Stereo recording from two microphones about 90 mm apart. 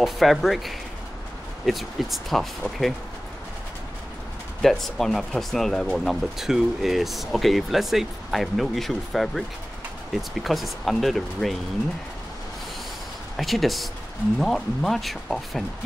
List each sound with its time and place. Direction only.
0.0 s speech: centre (ahead or behind)
4.6 s speech: 5° left (ahead or behind)
10.4 s speech: centre (ahead or behind)
13.4 s speech: centre (ahead or behind)